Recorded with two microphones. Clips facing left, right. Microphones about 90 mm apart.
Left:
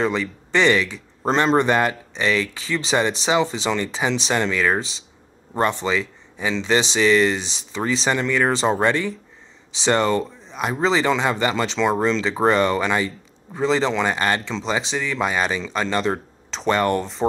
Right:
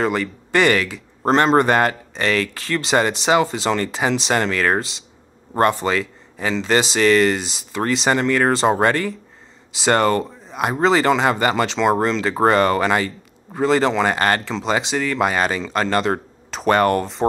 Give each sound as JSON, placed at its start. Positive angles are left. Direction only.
{"t": 0.0, "sound": "speech", "side_deg": -60}